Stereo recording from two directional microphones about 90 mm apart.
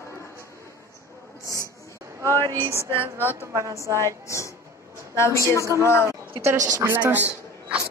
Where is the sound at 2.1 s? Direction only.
30° right (ahead or behind).